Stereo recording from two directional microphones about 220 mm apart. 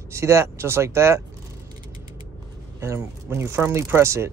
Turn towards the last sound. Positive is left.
turn(degrees=-10)  # may be behind; listen again after turning